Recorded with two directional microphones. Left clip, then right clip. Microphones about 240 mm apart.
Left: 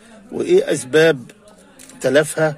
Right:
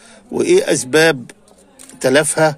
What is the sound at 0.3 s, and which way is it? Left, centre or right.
Speech, right.